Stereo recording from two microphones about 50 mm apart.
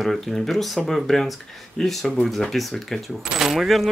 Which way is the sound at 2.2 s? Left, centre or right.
Centre.